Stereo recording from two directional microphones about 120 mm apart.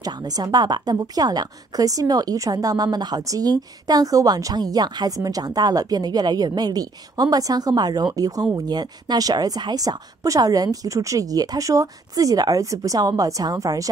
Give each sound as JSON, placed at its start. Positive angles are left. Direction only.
{"t": 0.0, "sound": "a woman's voice", "side_deg": -35}